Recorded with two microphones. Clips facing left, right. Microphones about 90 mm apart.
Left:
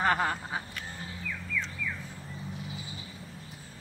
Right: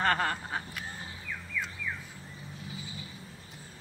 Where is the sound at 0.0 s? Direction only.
10° left (ahead or behind).